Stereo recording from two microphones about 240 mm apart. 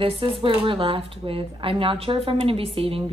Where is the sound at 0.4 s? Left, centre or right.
Right.